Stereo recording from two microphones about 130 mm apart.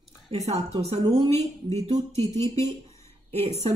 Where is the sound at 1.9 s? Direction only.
30° right (ahead or behind).